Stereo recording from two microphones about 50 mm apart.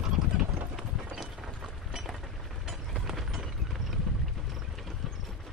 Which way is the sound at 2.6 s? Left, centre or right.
Centre.